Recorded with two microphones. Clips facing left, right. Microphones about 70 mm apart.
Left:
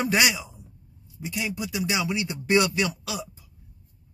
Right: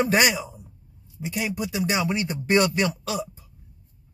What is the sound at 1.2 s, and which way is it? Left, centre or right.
Speech, centre.